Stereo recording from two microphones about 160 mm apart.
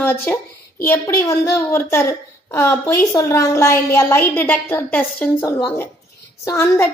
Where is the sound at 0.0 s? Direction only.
10° left (ahead or behind).